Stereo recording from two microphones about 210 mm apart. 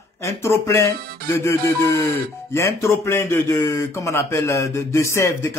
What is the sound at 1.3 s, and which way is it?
Speech, 10° left (ahead or behind).